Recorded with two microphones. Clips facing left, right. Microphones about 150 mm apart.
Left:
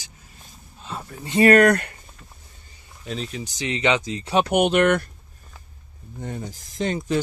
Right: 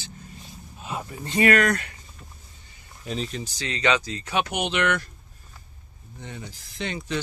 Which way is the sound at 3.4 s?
20° left (ahead or behind).